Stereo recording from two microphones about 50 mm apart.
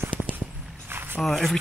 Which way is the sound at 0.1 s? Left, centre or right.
Right.